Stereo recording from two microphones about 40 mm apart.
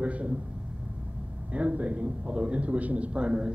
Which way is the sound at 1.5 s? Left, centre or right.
Right.